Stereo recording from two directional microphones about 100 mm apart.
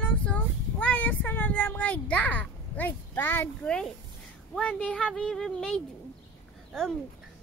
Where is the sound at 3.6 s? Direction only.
5° left (ahead or behind).